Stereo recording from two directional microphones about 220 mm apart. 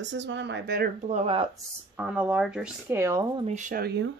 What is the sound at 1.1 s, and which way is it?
Speech, 25° right (ahead or behind).